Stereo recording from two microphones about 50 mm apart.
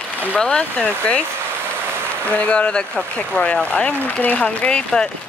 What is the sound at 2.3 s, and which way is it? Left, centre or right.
Speech, left.